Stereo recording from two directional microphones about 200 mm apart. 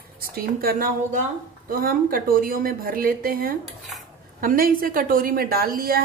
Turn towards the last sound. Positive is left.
turn(degrees=-45)  # may be behind; listen again after turning